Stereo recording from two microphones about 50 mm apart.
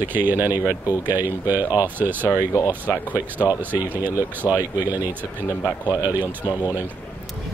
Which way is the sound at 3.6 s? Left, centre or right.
Right.